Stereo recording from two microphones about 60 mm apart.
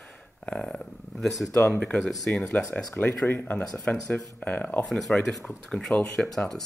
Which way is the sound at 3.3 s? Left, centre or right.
Left.